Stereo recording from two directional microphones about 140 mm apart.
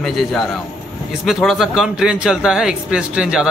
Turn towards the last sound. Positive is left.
turn(degrees=-5)  # may be behind; listen again after turning